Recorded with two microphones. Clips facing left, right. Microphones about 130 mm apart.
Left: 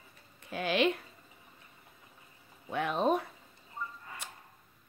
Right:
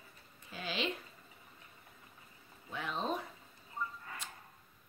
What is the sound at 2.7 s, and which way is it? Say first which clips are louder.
Speech: left 9 dB; 60° left (ahead or behind).